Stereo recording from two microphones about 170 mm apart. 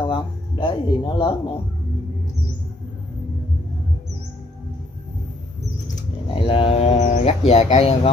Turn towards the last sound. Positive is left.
turn(degrees=35)  # may be behind; listen again after turning